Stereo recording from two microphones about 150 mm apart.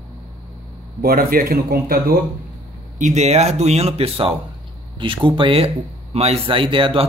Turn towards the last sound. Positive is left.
turn(degrees=-35)  # may be behind; listen again after turning